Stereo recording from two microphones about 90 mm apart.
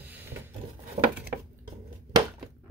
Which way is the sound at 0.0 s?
20° right (ahead or behind).